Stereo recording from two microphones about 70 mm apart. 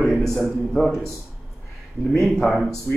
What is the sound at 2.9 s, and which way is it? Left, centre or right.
Speech, left.